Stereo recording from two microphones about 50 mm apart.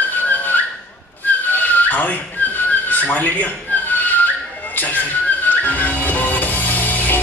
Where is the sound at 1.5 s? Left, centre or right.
Left.